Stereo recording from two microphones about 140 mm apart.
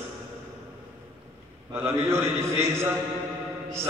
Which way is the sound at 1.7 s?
20° right (ahead or behind).